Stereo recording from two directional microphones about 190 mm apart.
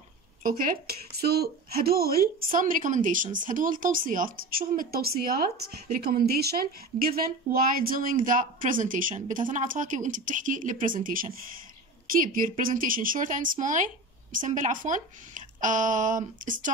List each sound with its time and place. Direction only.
0.4 s a woman's voice: 50° right (ahead or behind)